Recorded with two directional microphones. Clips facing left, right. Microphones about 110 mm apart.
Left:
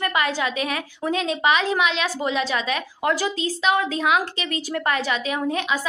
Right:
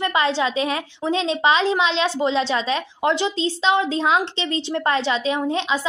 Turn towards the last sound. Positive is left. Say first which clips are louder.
# right 2 dB
turn(degrees=-25)  # may be behind; listen again after turning